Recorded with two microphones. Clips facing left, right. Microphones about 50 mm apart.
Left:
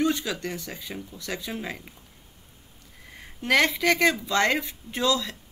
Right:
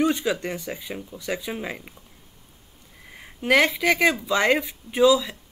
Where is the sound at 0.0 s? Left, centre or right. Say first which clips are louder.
Right 3 dB; right.